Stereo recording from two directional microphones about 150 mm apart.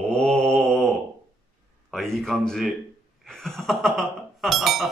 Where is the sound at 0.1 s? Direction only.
5° left (ahead or behind).